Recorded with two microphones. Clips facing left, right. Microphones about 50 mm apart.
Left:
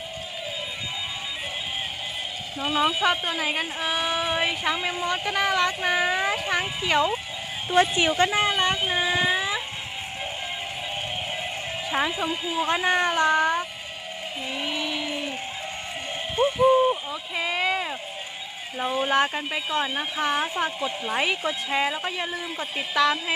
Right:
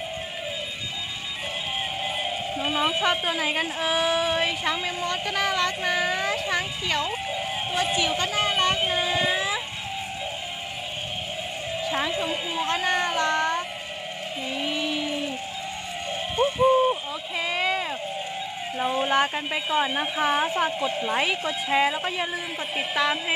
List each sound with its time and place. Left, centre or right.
2.6 s speech: centre
2.9 s speech: centre
7.7 s a woman's voice: left
9.0 s a sound: centre
11.8 s speech: centre
12.3 s speech: centre
12.6 s speech: centre
14.5 s a sound: centre
16.5 s a sound: centre
18.8 s speech: centre
22.8 s a woman's voice: centre